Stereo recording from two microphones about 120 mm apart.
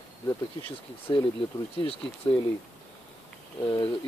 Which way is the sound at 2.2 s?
35° left (ahead or behind).